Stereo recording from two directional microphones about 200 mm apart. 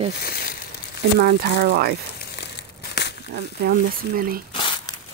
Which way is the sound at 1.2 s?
55° right (ahead or behind).